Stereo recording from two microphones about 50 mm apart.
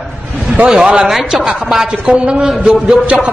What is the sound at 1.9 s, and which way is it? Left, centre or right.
Speech, right.